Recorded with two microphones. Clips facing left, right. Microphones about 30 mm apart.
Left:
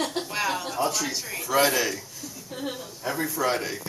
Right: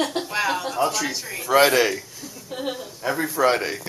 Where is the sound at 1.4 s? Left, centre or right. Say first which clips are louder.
Right 6 dB; right.